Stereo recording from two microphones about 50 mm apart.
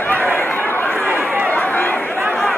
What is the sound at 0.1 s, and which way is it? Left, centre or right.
Chatter, left.